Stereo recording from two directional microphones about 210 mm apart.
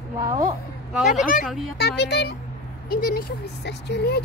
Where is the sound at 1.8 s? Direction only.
50° left (ahead or behind).